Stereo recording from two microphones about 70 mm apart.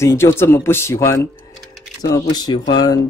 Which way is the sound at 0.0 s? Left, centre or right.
Left.